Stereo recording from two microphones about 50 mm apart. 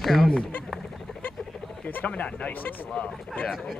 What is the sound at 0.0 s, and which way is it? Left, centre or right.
Speech, centre.